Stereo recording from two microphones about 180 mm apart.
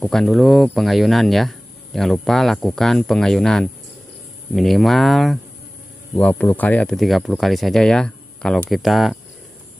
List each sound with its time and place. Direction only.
0.0 s speech: centre (ahead or behind)